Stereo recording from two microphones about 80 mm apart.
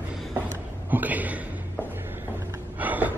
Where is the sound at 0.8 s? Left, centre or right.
Right.